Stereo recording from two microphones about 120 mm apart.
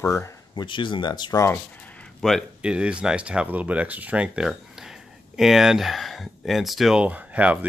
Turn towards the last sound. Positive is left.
turn(degrees=-10)  # may be behind; listen again after turning